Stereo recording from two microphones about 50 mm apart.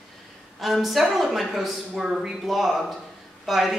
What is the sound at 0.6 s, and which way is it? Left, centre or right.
A woman's voice, centre.